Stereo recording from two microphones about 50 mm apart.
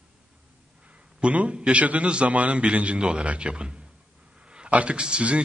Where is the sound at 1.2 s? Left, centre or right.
Right.